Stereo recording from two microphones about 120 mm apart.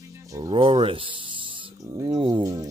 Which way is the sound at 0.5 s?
45° right (ahead or behind).